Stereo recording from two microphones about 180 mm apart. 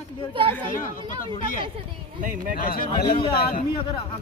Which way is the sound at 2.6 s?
55° left (ahead or behind).